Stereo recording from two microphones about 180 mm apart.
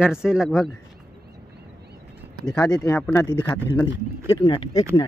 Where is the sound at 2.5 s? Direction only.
20° left (ahead or behind).